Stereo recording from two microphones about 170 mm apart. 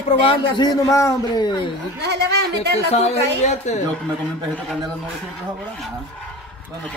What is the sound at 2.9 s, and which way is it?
Speech, 40° left (ahead or behind).